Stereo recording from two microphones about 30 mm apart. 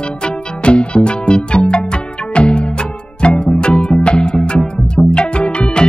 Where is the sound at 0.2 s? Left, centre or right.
Left.